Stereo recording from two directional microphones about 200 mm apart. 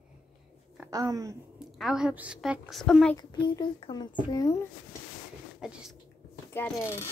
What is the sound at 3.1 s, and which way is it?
A child's voice, 20° left (ahead or behind).